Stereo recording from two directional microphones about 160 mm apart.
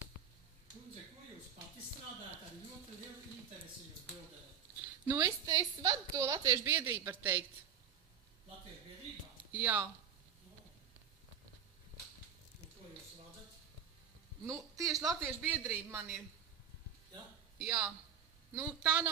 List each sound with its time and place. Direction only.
5.0 s a woman's voice: 15° right (ahead or behind)
5.4 s a woman's voice: 25° right (ahead or behind)
9.5 s speech: 10° right (ahead or behind)
14.4 s a man's voice: 20° right (ahead or behind)
17.6 s a man's voice: 10° right (ahead or behind)